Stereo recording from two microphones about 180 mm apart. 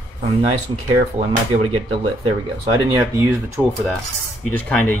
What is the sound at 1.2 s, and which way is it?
Speech, 35° right (ahead or behind).